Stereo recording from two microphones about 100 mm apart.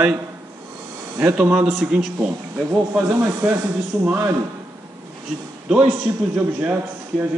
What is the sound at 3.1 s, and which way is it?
Speech, 25° right (ahead or behind).